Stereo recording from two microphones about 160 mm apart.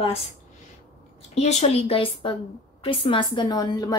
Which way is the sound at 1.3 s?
40° left (ahead or behind).